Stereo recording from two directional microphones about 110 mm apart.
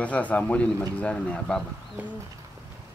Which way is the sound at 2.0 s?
15° right (ahead or behind).